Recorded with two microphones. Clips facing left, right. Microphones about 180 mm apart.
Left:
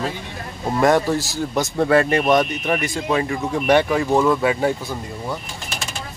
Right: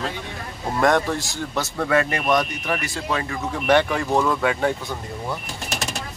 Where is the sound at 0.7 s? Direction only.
5° left (ahead or behind).